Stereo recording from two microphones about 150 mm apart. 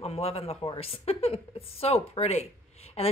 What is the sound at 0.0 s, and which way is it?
Speech, 40° left (ahead or behind).